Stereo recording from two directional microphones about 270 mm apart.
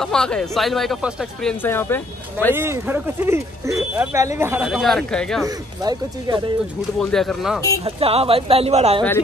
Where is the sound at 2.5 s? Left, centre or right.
Centre.